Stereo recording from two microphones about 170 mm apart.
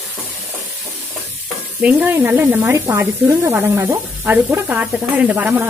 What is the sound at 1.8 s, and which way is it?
Speech, 10° right (ahead or behind).